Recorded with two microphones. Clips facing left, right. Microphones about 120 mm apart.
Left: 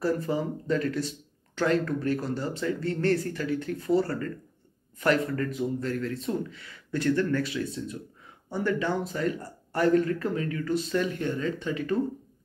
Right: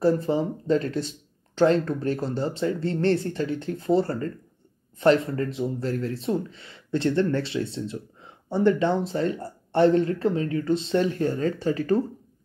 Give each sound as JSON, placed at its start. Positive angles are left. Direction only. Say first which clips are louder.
{"t": 0.0, "sound": "speech", "louder": "right 5 dB", "side_deg": -30}